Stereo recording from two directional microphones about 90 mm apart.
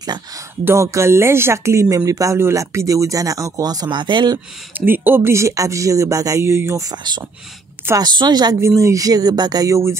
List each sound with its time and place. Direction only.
0.7 s speech: 30° right (ahead or behind); by 4.4 s 60° right (ahead or behind)
4.7 s speech: 25° right (ahead or behind)
8.0 s a woman's voice: 50° right (ahead or behind)
8.5 s speech: 35° right (ahead or behind)